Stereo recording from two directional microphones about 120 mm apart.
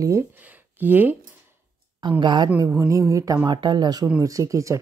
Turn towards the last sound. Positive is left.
turn(degrees=-25)  # may be behind; listen again after turning